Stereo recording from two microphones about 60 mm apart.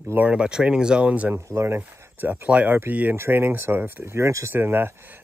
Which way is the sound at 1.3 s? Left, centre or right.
Right.